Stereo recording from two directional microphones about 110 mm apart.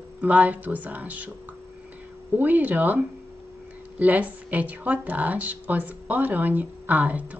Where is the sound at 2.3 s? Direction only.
15° right (ahead or behind).